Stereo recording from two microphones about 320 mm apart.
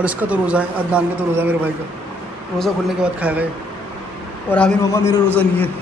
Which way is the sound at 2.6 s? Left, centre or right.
Centre.